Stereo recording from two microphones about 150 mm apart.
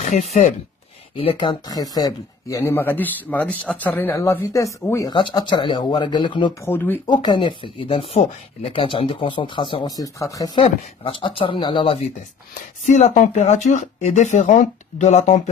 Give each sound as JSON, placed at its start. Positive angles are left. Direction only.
{"t": 0.0, "sound": "speech", "side_deg": 45}
{"t": 1.1, "sound": "speech", "side_deg": 35}
{"t": 5.1, "sound": "speech", "side_deg": 30}
{"t": 6.6, "sound": "speech", "side_deg": 15}
{"t": 7.1, "sound": "speech", "side_deg": 30}
{"t": 10.6, "sound": "speech", "side_deg": 35}
{"t": 12.8, "sound": "speech", "side_deg": 55}